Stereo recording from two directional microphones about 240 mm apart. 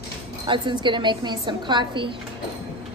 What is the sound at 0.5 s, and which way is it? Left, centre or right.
A woman's voice, centre.